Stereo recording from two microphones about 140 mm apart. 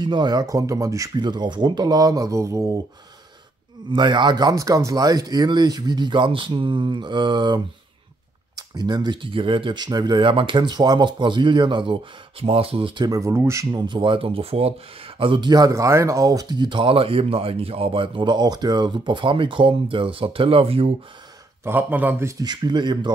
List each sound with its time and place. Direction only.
0.0 s speech: 30° right (ahead or behind)
3.9 s speech: 35° right (ahead or behind)
21.6 s speech: 15° right (ahead or behind)
22.4 s speech: 30° right (ahead or behind)